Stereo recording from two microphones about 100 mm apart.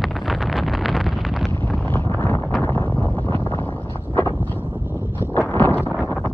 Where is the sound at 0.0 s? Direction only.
Centre (ahead or behind).